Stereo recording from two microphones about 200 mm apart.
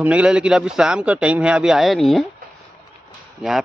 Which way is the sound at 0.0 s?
5° right (ahead or behind).